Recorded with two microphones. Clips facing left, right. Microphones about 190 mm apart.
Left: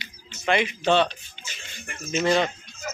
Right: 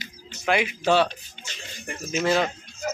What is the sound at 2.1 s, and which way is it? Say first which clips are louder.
Speech: left 1 dB; centre (ahead or behind).